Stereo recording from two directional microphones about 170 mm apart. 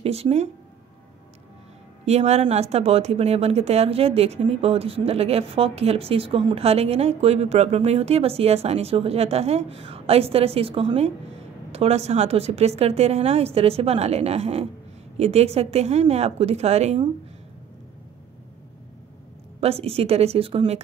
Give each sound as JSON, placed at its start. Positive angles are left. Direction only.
{"t": 0.0, "sound": "speech", "side_deg": -35}
{"t": 2.0, "sound": "speech", "side_deg": -40}
{"t": 19.6, "sound": "speech", "side_deg": -35}